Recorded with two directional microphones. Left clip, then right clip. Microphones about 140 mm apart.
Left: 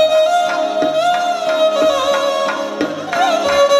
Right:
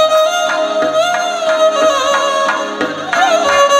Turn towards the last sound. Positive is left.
turn(degrees=45)  # may be behind; listen again after turning